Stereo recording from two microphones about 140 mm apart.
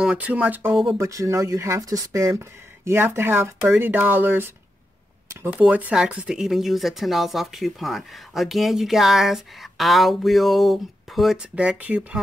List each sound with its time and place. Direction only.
0.0 s speech: 10° right (ahead or behind)
5.5 s speech: 10° right (ahead or behind)